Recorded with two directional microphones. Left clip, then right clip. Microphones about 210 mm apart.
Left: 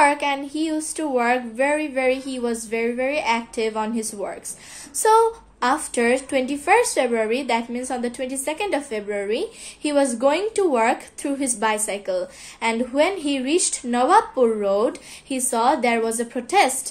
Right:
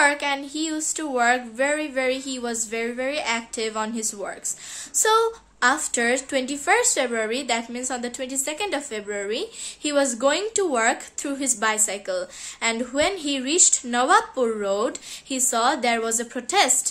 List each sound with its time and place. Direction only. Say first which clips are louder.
0.0 s a woman's voice: left 2 dB; 15° right (ahead or behind)